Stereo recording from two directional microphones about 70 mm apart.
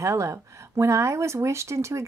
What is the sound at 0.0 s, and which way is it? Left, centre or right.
Speech, right.